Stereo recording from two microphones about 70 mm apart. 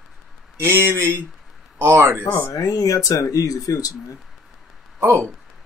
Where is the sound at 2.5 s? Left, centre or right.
Left.